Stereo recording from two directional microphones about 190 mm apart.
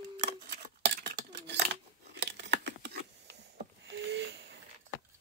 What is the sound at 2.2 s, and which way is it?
Scissors, 60° right (ahead or behind).